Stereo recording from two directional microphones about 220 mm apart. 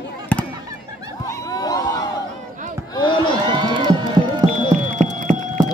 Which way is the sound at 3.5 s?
20° right (ahead or behind).